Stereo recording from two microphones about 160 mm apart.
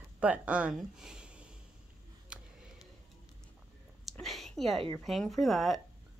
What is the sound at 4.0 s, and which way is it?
Whispering, centre (ahead or behind).